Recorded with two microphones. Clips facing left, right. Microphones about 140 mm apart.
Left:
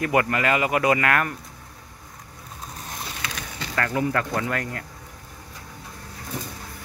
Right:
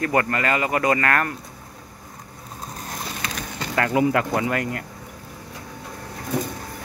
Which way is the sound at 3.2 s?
40° right (ahead or behind).